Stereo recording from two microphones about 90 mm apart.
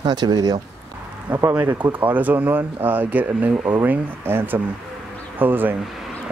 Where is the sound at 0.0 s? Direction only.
50° right (ahead or behind).